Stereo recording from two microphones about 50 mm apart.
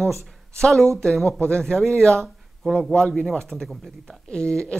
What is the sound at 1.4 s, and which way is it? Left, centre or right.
Speech, centre.